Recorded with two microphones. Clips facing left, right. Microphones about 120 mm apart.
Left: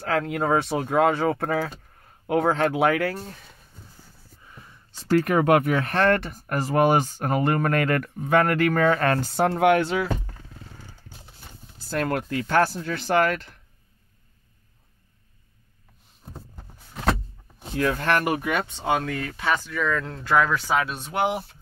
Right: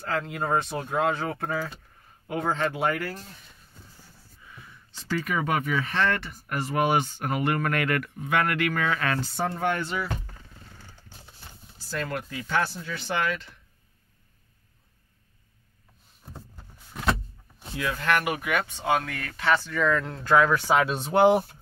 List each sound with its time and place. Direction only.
0.0 s speech: 65° left (ahead or behind); by 1.7 s 80° left
2.2 s speech: 70° left (ahead or behind); by 3.2 s 90° left
5.1 s speech: 65° left (ahead or behind); by 9.3 s 45° left (ahead or behind)
9.3 s speech: 75° left (ahead or behind)
11.9 s speech: 55° left (ahead or behind)
17.6 s speech: 50° left (ahead or behind); by 19.7 s 15° left (ahead or behind)
19.7 s speech: centre (ahead or behind)
20.6 s speech: 25° right (ahead or behind)